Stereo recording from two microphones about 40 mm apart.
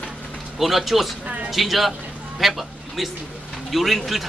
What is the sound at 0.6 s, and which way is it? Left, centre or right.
Speech, centre.